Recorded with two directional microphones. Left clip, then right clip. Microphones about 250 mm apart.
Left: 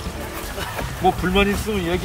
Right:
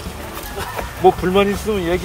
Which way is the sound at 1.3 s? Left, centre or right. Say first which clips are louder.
Right 3 dB; right.